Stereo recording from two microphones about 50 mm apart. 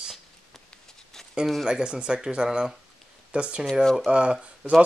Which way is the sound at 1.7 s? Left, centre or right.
Centre.